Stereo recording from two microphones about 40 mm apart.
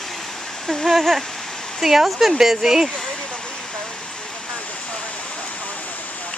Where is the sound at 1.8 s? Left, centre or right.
Centre.